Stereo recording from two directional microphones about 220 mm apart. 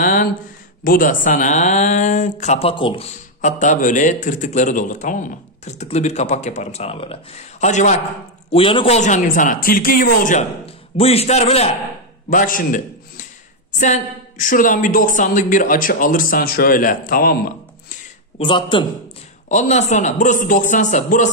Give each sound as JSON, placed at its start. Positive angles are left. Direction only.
{"t": 0.0, "sound": "a sound", "side_deg": 35}
{"t": 0.8, "sound": "a man's voice", "side_deg": 40}
{"t": 3.3, "sound": "a man's voice", "side_deg": 35}
{"t": 18.4, "sound": "a man's voice", "side_deg": 20}
{"t": 19.5, "sound": "a man's voice", "side_deg": 30}